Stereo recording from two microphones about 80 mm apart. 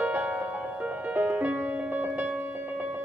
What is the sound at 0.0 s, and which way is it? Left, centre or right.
Music, right.